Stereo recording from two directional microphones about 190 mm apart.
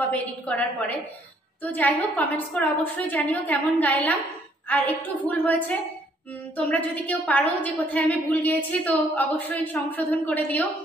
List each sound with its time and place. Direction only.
0.1 s a woman's voice: 10° left (ahead or behind)